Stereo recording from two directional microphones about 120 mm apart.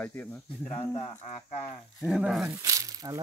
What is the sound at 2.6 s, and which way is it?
Speech, 30° right (ahead or behind).